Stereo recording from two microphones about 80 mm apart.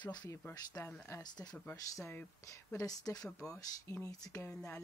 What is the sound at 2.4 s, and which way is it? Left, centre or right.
Speech, left.